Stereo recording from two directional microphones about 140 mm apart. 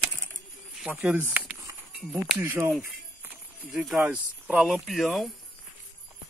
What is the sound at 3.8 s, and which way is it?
Speech, 5° right (ahead or behind).